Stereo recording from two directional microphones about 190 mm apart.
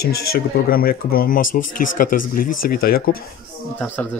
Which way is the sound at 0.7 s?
50° left (ahead or behind).